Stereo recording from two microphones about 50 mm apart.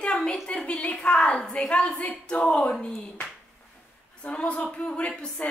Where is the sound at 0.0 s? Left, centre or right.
Centre.